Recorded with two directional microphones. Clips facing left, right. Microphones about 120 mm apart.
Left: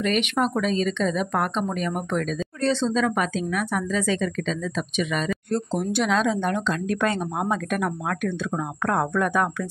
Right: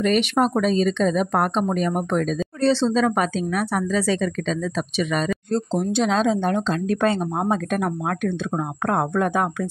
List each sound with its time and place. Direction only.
0.0 s speech: 40° right (ahead or behind)